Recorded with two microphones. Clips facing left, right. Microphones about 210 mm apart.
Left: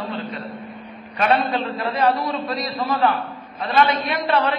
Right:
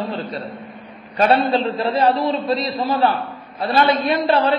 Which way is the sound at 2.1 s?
Centre (ahead or behind).